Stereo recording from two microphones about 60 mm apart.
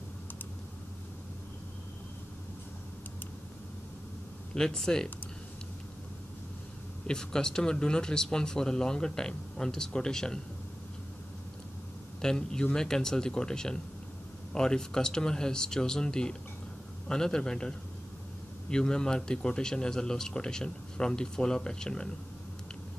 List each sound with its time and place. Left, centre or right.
4.6 s speech: centre
7.1 s speech: centre
12.2 s speech: centre